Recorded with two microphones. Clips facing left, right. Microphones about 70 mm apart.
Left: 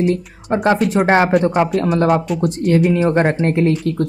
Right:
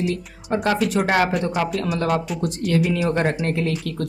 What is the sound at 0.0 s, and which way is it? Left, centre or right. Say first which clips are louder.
Speech: left 7 dB; left.